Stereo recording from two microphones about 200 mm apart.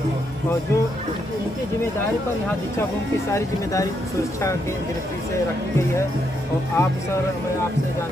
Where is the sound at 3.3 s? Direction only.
15° left (ahead or behind).